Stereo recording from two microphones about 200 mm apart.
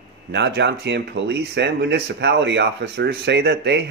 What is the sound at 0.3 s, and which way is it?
Speech, 60° right (ahead or behind).